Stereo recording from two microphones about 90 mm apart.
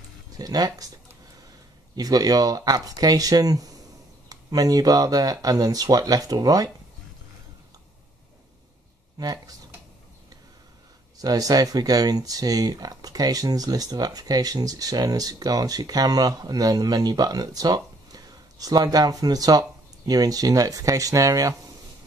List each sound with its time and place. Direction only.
0.4 s speech: 45° right (ahead or behind)
2.0 s speech: 45° right (ahead or behind)
9.2 s speech: 45° right (ahead or behind)
11.1 s speech: 40° right (ahead or behind)